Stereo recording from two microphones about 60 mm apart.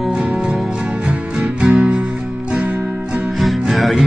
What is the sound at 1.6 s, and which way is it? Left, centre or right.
Music, centre.